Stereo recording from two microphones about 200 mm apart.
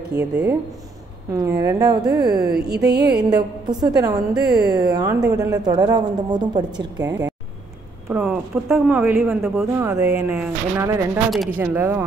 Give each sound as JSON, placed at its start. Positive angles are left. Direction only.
{"t": 0.1, "sound": "a woman's voice", "side_deg": -15}
{"t": 2.8, "sound": "a sound", "side_deg": -55}
{"t": 3.3, "sound": "a woman's voice", "side_deg": -20}
{"t": 8.1, "sound": "speech", "side_deg": -5}